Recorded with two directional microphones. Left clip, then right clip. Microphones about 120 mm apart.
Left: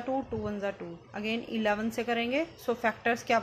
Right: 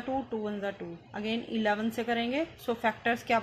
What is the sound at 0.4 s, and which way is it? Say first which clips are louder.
Speech: left 1 dB; 15° left (ahead or behind).